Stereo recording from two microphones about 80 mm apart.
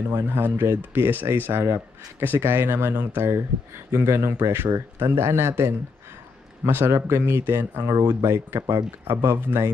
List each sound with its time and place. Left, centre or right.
0.1 s a man's voice: right